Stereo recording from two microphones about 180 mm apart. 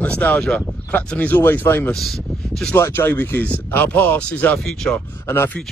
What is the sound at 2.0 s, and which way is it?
Speech, centre (ahead or behind).